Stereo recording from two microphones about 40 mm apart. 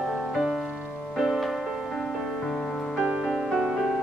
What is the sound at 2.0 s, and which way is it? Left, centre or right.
Music, centre.